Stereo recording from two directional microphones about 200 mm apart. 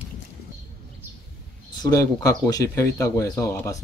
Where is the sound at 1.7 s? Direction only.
20° left (ahead or behind).